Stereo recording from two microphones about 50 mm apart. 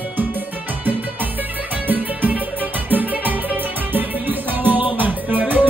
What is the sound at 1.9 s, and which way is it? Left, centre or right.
Music, right.